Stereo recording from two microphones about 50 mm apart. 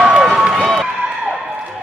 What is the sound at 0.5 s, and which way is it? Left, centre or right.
Run, centre.